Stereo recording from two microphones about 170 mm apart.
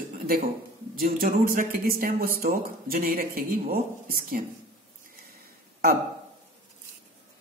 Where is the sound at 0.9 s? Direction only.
60° right (ahead or behind).